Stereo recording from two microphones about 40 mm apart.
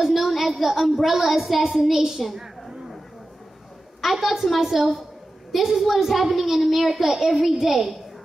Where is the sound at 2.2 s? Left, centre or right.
Centre.